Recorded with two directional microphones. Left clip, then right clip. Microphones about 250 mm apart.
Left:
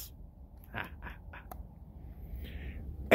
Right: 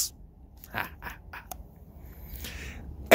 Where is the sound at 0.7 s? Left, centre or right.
Centre.